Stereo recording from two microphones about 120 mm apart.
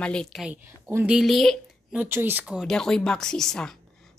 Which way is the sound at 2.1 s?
15° right (ahead or behind).